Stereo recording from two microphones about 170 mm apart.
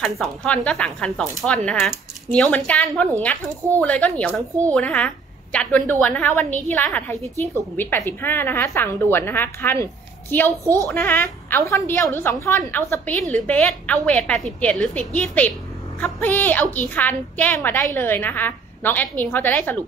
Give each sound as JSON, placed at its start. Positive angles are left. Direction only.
{"t": 0.0, "sound": "a woman's voice", "side_deg": 0}
{"t": 10.6, "sound": "a woman's voice", "side_deg": -15}
{"t": 10.9, "sound": "a woman's voice", "side_deg": 10}